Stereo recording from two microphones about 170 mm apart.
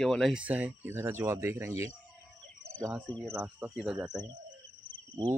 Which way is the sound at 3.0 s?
5° left (ahead or behind).